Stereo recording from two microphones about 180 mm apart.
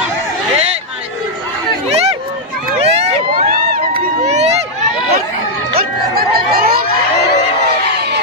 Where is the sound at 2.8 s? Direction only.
35° right (ahead or behind).